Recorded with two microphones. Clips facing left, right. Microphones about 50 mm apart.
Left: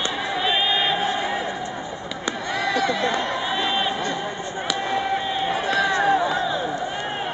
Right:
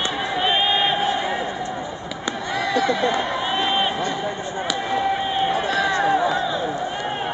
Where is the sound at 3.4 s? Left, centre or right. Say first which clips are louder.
Right 2 dB; right.